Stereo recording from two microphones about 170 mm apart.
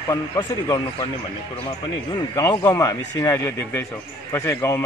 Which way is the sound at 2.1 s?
20° left (ahead or behind).